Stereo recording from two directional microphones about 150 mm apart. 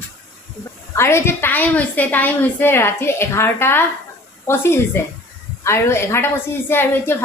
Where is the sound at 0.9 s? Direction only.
15° left (ahead or behind).